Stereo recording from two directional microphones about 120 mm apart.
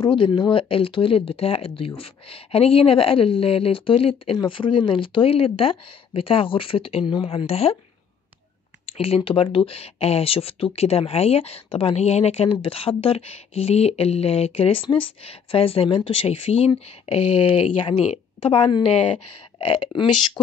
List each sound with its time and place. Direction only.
0.0 s speech: 40° left (ahead or behind); by 7.7 s 55° left (ahead or behind)
8.9 s speech: 55° left (ahead or behind)